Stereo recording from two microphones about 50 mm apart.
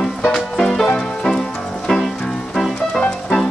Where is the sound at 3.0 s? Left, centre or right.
Centre.